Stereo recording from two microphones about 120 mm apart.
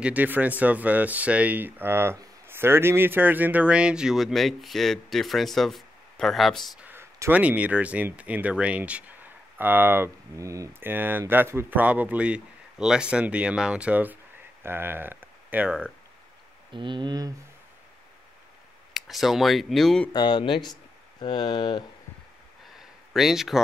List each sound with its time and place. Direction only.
0.0 s a man's voice: 15° right (ahead or behind)
6.8 s speech: 20° right (ahead or behind)
16.7 s speech: 40° right (ahead or behind)
18.9 s a man's voice: centre (ahead or behind)
20.1 s speech: 40° left (ahead or behind)
22.8 s a sound: centre (ahead or behind)